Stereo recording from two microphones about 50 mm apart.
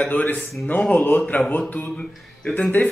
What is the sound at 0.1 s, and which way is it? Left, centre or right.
A man's voice, left.